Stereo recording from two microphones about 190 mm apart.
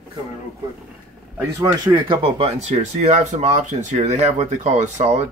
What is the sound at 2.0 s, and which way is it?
Speech, 30° right (ahead or behind).